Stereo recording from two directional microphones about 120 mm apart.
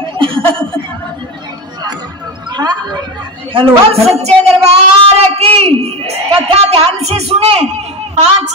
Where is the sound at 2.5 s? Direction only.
35° right (ahead or behind).